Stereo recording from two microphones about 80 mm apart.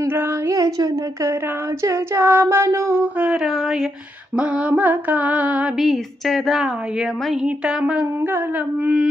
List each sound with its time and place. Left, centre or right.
0.0 s female singing: right
1.8 s a capella: right
4.4 s mantra: centre
5.8 s a woman's voice: centre
7.4 s mantra: centre